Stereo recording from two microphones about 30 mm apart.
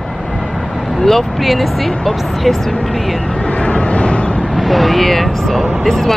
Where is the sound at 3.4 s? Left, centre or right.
Left.